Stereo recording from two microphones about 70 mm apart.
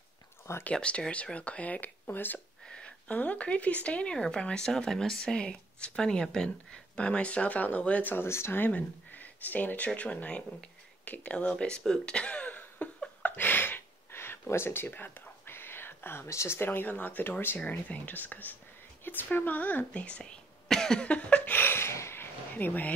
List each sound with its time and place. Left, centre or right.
0.7 s speech: centre
2.6 s speech: centre
21.5 s a sound: left